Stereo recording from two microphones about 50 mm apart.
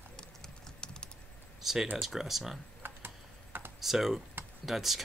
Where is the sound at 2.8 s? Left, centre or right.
Right.